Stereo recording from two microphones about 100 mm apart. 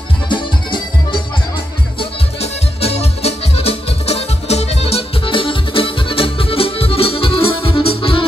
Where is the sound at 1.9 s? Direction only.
80° left.